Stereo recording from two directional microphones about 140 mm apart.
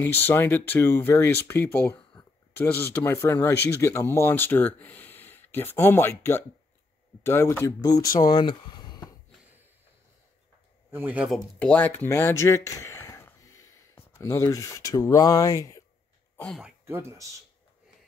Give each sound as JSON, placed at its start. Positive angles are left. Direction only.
{"t": 0.0, "sound": "speech", "side_deg": 15}
{"t": 8.0, "sound": "speech", "side_deg": 90}
{"t": 8.3, "sound": "a sound", "side_deg": 35}
{"t": 10.9, "sound": "speech", "side_deg": -15}
{"t": 11.6, "sound": "speech", "side_deg": 10}
{"t": 16.3, "sound": "speech", "side_deg": 10}
{"t": 16.8, "sound": "speech", "side_deg": -20}